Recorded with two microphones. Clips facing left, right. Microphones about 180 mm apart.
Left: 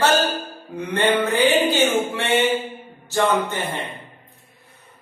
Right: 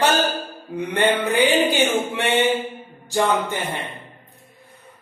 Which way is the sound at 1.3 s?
10° right (ahead or behind).